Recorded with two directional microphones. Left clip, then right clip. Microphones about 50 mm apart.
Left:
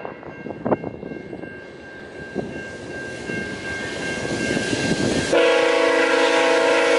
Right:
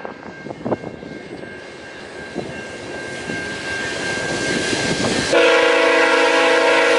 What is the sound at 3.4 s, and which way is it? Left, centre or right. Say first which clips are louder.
Vehicle: right 4 dB; centre.